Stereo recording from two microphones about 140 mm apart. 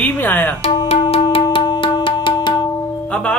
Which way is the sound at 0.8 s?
40° left (ahead or behind).